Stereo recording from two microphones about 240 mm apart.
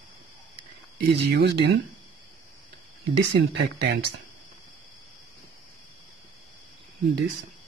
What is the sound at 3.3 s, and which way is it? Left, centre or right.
Speech, right.